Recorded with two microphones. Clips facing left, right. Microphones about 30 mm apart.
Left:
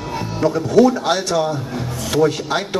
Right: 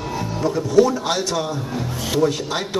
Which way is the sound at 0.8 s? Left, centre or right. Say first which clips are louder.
Left 3 dB; centre.